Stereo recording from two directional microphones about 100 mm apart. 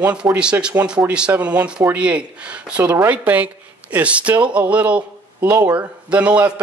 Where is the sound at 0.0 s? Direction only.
15° right (ahead or behind).